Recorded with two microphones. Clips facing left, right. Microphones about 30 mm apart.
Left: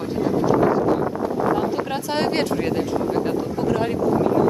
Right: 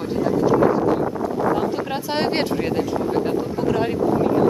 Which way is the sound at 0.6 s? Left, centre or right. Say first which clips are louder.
Right 1 dB; centre.